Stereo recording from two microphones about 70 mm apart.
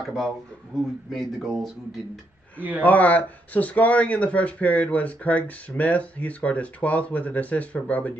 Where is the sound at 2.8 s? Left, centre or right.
Left.